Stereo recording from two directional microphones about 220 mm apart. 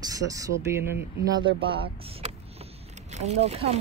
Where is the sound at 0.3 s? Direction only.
15° right (ahead or behind).